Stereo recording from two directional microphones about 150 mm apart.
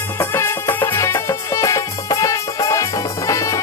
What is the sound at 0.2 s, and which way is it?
Music, 15° left (ahead or behind).